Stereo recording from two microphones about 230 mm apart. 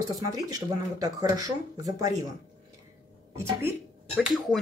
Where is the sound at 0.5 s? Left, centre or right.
Centre.